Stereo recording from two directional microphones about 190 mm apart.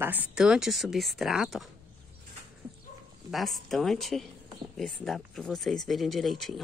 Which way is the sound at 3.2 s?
Centre (ahead or behind).